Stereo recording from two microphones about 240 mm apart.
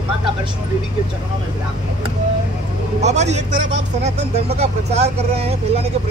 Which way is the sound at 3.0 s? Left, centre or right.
Right.